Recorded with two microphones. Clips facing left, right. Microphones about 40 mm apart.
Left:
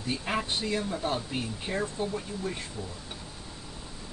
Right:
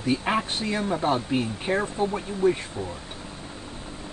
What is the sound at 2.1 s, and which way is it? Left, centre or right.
Speech, right.